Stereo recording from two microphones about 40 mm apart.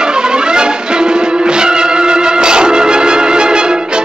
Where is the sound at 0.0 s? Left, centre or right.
Right.